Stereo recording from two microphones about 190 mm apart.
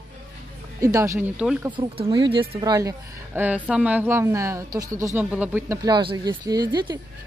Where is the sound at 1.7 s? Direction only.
25° right (ahead or behind).